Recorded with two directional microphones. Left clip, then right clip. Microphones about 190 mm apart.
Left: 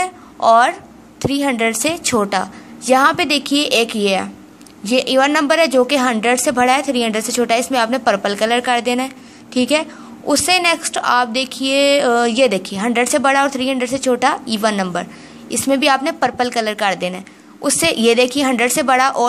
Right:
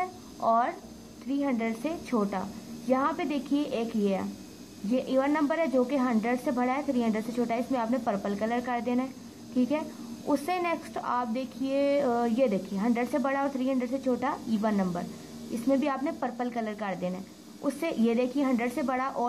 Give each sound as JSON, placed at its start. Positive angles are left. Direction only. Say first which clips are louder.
{"t": 0.5, "sound": "speech", "louder": "left 14 dB", "side_deg": 25}